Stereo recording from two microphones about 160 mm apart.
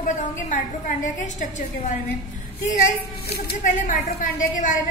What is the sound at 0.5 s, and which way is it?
A woman's voice, 50° left (ahead or behind).